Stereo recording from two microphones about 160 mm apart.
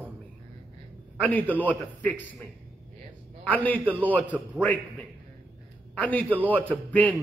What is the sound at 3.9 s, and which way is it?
Speech, 10° right (ahead or behind).